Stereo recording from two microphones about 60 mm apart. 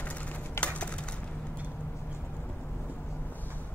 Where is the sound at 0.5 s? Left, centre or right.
Left.